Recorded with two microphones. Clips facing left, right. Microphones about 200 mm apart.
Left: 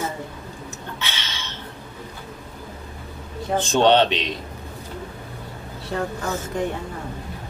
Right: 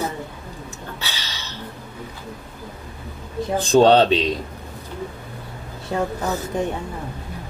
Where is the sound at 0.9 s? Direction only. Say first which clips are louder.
Left 1 dB; 35° right (ahead or behind).